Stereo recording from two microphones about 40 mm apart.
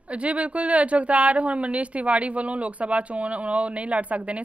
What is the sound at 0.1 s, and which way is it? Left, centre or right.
A woman's voice, right.